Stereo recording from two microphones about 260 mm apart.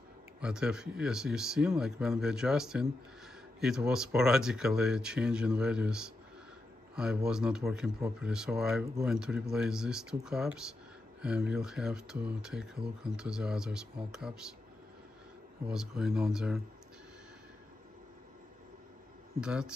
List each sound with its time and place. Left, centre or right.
0.4 s speech: centre
7.2 s speech: centre
15.6 s speech: centre
19.4 s speech: centre